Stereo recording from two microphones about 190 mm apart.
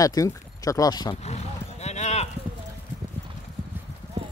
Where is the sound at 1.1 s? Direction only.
35° left (ahead or behind).